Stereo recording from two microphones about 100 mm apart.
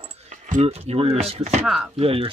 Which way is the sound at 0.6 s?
90° right.